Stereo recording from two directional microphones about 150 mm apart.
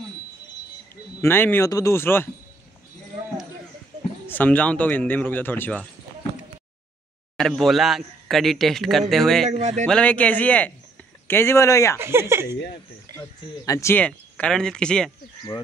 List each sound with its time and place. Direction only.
1.2 s a man's voice: 15° left (ahead or behind)
4.3 s a man's voice: 10° left (ahead or behind)
7.3 s speech: centre (ahead or behind)
9.5 s speech: 50° right (ahead or behind)
9.8 s a man's voice: 5° left (ahead or behind)
12.0 s speech: 15° right (ahead or behind)
13.2 s speech: 20° left (ahead or behind)
13.9 s speech: 5° left (ahead or behind)